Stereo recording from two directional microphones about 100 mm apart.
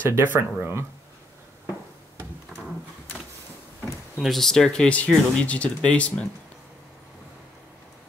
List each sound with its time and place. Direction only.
0.1 s speech: 25° right (ahead or behind)
4.2 s speech: centre (ahead or behind)